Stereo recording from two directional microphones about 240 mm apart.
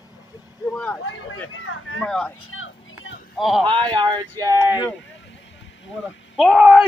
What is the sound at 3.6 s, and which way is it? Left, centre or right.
Speech, centre.